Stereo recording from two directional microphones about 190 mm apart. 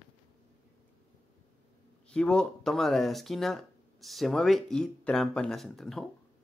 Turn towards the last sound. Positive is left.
turn(degrees=0)  # may be behind; listen again after turning